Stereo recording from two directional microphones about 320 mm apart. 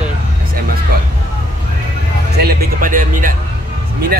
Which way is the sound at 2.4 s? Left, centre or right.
Right.